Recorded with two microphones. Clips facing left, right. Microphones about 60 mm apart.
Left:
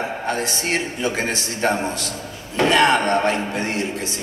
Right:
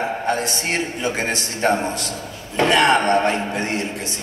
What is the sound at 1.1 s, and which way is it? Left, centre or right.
Speech, right.